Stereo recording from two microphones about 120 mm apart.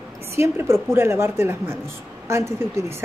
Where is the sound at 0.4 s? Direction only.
20° right (ahead or behind).